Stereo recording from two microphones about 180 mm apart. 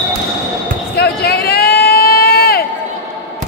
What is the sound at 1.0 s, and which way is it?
Run, 60° left (ahead or behind).